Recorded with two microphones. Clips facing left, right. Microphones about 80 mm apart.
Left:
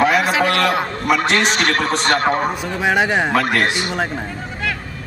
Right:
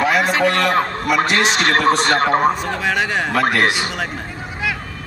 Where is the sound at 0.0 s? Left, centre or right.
Centre.